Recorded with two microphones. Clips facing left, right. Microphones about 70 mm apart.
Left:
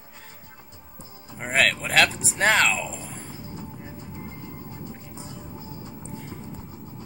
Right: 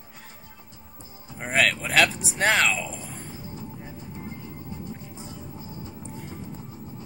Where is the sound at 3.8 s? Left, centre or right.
Left.